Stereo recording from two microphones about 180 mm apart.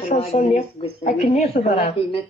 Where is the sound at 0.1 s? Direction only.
35° left (ahead or behind).